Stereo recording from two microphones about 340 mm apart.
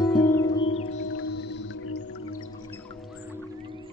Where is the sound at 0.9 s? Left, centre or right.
Left.